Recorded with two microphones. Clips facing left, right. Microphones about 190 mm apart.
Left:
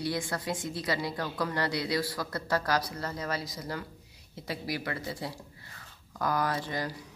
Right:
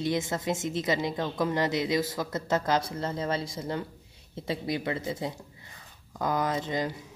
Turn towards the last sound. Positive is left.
turn(degrees=-20)  # may be behind; listen again after turning